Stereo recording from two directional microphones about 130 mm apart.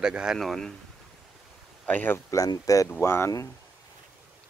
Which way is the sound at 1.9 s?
15° left (ahead or behind).